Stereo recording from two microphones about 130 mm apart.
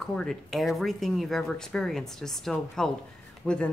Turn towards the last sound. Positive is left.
turn(degrees=5)  # may be behind; listen again after turning